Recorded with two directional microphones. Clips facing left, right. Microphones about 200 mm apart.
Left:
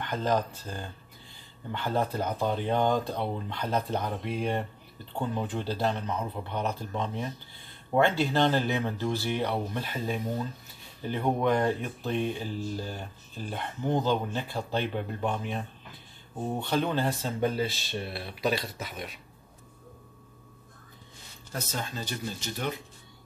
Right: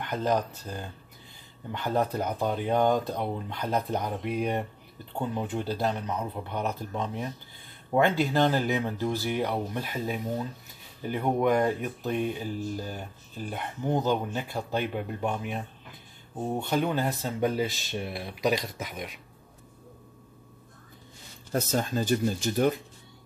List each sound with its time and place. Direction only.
0.0 s speech: 10° right (ahead or behind)
21.5 s speech: 45° right (ahead or behind)